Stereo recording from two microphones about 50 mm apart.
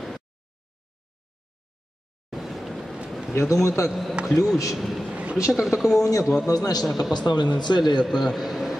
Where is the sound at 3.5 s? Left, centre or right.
Left.